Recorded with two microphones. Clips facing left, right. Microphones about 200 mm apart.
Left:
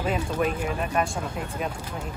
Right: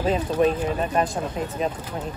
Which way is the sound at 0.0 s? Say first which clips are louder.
Right 5 dB; 30° right (ahead or behind).